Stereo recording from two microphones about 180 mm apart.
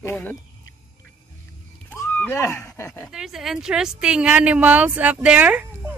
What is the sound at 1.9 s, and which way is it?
Speech, 10° left (ahead or behind).